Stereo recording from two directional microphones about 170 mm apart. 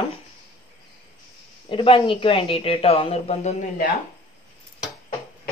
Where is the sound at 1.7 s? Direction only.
30° left (ahead or behind).